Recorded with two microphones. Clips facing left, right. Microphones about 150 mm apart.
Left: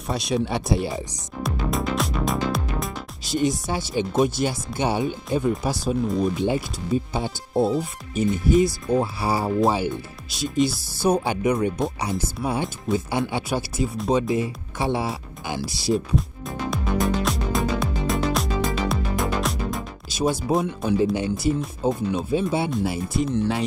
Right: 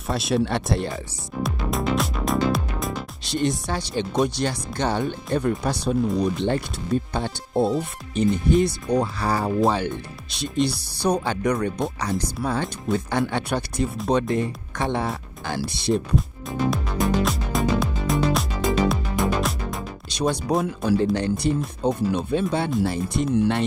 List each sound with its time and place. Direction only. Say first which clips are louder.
0.0 s speech: right 2 dB; centre (ahead or behind)
1.4 s music: even; centre (ahead or behind)
2.5 s speech: right 1 dB; centre (ahead or behind)
12.8 s music: right 1 dB; centre (ahead or behind)
18.9 s speech: right 2 dB; centre (ahead or behind)